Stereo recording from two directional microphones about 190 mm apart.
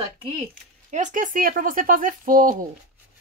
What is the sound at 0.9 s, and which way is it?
Speech, 40° right (ahead or behind).